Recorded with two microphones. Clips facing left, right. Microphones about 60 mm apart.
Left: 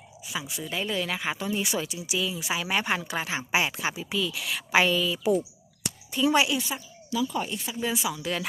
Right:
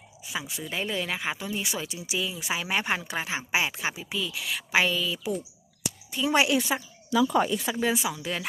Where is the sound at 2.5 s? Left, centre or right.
Centre.